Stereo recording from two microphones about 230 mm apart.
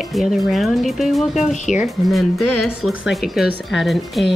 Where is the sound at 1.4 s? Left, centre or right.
Left.